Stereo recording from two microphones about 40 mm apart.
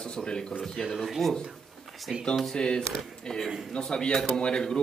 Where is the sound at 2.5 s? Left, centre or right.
Left.